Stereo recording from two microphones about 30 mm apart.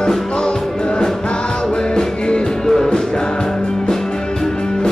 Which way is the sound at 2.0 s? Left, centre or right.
Left.